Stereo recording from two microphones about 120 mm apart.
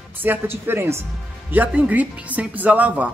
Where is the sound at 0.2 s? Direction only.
15° right (ahead or behind).